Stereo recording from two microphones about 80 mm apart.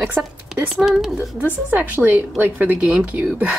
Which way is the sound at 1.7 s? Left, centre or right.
Right.